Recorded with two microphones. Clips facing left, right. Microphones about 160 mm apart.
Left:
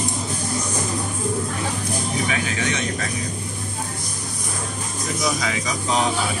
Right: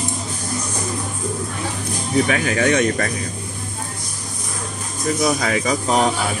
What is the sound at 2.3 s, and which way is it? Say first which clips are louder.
Speech: right 7 dB; 55° right (ahead or behind).